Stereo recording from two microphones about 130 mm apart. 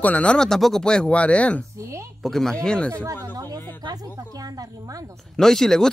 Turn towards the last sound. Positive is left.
turn(degrees=5)  # may be behind; listen again after turning